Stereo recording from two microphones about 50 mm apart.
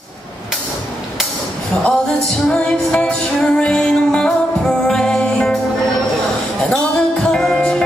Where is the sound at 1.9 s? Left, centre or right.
Centre.